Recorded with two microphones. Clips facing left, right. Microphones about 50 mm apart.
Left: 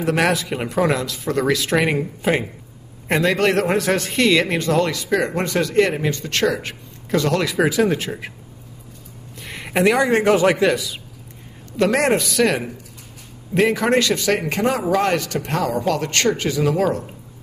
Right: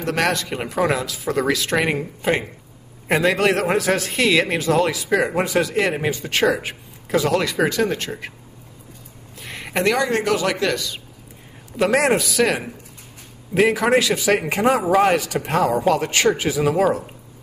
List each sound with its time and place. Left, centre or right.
0.0 s a man's voice: centre
9.4 s a sound: centre
10.0 s a man's voice: left; by 11.0 s centre
11.7 s a man's voice: centre